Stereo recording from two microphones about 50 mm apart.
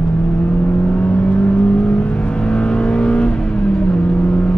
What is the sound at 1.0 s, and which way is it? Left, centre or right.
Vehicle, centre.